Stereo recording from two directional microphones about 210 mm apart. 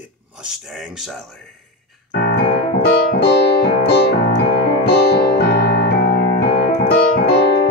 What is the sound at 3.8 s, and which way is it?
Piano, 50° left (ahead or behind).